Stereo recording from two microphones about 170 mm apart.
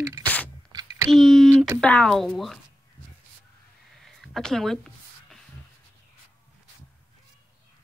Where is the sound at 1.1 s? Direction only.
Centre (ahead or behind).